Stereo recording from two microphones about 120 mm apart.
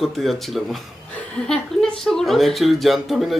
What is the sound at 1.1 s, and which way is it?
Chuckle, 5° left (ahead or behind).